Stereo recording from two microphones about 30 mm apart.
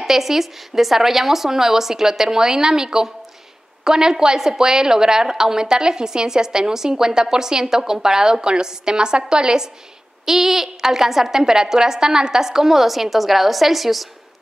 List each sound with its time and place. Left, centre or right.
0.0 s a woman's voice: centre
10.2 s speech: centre